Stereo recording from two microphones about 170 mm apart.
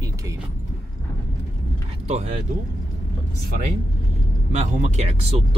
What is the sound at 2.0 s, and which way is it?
Speech, 40° right (ahead or behind).